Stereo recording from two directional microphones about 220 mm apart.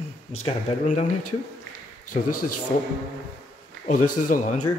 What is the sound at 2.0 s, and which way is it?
Speech, 90° left.